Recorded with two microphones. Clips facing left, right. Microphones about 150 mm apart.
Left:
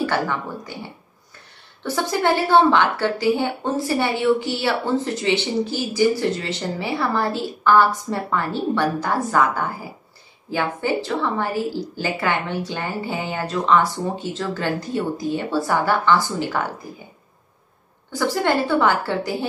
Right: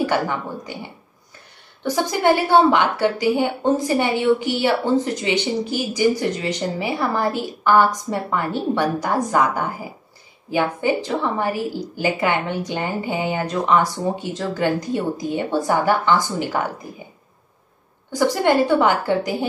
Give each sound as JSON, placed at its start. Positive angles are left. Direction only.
{"t": 0.0, "sound": "speech", "side_deg": -15}
{"t": 1.8, "sound": "a woman's voice", "side_deg": -15}
{"t": 18.1, "sound": "a woman's voice", "side_deg": -15}